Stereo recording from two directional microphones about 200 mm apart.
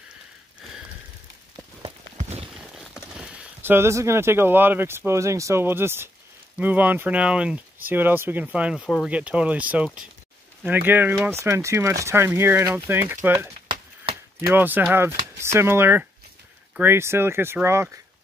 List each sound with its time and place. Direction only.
2.1 s a sound: 30° right (ahead or behind)
2.5 s speech: centre (ahead or behind)
13.7 s chop: 25° right (ahead or behind)
14.5 s speech: 10° right (ahead or behind)